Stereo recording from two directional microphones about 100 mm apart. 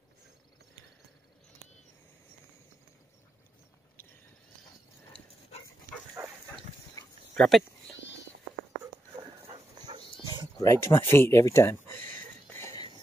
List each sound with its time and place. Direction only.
6.2 s dog: 15° right (ahead or behind)
7.3 s speech: centre (ahead or behind)
9.8 s dog: 45° right (ahead or behind)
10.6 s speech: 25° left (ahead or behind)
11.1 s a sound: 25° left (ahead or behind)